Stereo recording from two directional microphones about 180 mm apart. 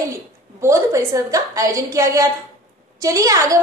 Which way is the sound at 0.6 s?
15° right (ahead or behind).